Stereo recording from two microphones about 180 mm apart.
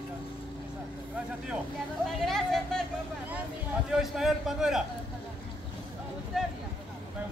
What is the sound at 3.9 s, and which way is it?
Speech, centre (ahead or behind).